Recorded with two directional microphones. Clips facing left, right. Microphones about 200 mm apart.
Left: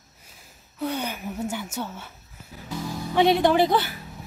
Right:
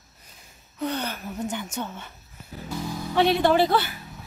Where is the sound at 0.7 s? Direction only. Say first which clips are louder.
Even; 10° left (ahead or behind).